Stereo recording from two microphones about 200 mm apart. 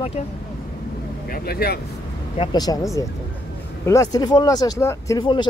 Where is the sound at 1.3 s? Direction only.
50° left (ahead or behind).